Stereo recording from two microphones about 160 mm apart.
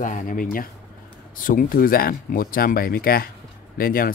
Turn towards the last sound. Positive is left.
turn(degrees=65)  # may be behind; listen again after turning